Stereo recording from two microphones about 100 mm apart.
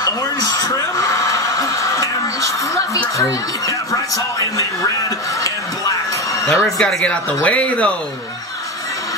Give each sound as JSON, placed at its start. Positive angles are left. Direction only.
{"t": 0.0, "sound": "chuckle", "side_deg": 40}
{"t": 3.2, "sound": "speech", "side_deg": 35}
{"t": 6.4, "sound": "speech", "side_deg": 30}
{"t": 6.8, "sound": "speech", "side_deg": 5}